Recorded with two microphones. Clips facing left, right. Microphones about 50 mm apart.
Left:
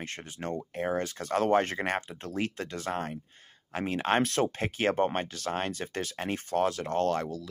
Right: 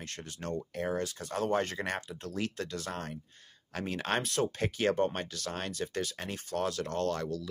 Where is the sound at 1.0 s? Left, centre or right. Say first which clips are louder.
Left 5 dB; left.